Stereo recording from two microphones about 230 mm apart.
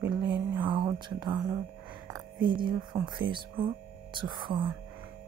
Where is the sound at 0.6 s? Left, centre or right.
Centre.